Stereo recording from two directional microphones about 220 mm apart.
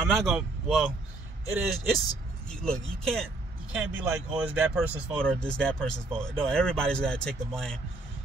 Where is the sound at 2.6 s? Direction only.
Centre (ahead or behind).